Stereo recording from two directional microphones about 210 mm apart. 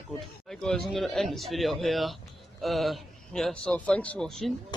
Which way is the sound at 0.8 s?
Centre (ahead or behind).